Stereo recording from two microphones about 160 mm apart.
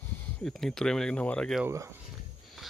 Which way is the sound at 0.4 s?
5° left (ahead or behind).